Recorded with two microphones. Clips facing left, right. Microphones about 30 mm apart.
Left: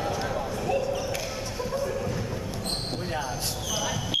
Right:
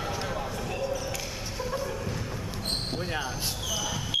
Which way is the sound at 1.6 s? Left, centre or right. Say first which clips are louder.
Left 3 dB; centre.